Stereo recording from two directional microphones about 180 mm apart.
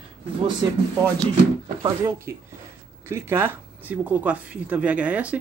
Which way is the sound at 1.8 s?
15° right (ahead or behind).